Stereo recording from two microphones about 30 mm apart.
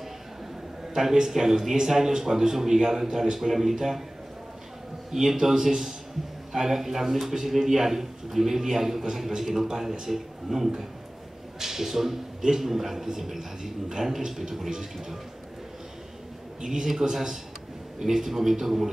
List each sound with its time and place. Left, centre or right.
1.2 s a man's voice: centre
5.1 s a man's voice: centre
16.6 s a man's voice: centre